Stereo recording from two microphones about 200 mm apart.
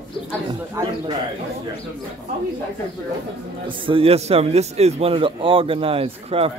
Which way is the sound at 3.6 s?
25° right (ahead or behind).